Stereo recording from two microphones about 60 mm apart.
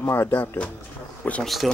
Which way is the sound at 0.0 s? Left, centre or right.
Left.